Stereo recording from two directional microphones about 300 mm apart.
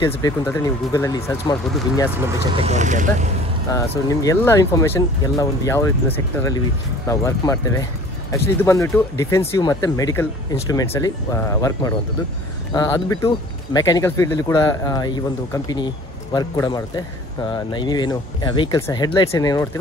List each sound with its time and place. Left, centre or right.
0.0 s speech: centre
2.4 s speech: centre
3.9 s speech: centre